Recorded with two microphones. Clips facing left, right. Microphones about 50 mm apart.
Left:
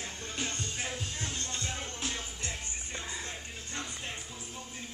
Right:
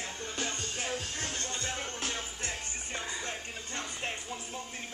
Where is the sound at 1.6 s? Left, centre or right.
Right.